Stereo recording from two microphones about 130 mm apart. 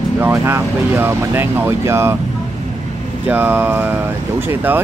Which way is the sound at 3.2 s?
15° right (ahead or behind).